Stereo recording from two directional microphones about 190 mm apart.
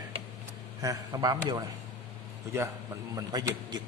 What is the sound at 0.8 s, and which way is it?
Speech, 20° right (ahead or behind).